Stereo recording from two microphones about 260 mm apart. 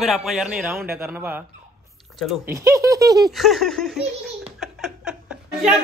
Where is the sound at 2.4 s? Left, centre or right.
Centre.